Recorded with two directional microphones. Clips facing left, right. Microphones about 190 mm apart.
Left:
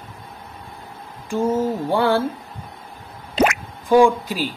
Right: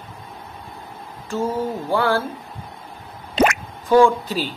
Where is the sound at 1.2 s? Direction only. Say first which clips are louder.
Left 3 dB; 15° left (ahead or behind).